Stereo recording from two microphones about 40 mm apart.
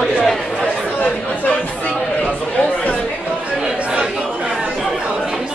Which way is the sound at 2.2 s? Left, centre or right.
Left.